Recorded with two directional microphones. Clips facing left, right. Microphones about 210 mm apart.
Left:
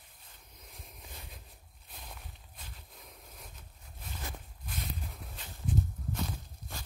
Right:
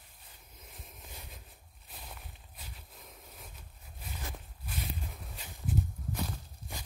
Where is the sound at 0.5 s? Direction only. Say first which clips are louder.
Even; centre (ahead or behind).